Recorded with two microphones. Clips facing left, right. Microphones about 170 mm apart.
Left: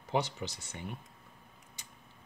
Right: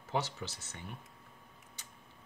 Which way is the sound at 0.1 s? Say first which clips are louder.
Left 3 dB; 15° left (ahead or behind).